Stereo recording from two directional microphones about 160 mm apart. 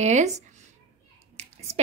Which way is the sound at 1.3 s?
40° right (ahead or behind).